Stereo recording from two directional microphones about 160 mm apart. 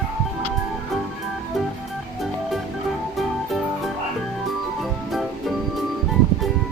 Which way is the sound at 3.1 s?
Centre (ahead or behind).